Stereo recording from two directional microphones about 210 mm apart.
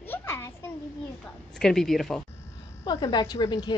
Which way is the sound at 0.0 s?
10° left (ahead or behind).